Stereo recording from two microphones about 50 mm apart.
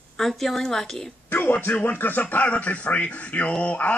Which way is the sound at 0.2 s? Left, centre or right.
Centre.